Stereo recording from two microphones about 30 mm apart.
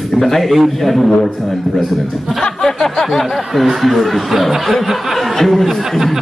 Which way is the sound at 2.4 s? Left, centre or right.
Centre.